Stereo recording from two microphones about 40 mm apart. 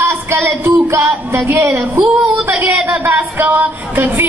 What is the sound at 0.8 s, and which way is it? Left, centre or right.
Music, right.